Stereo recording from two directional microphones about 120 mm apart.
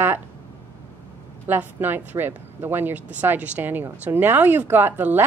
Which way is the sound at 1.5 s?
15° right (ahead or behind).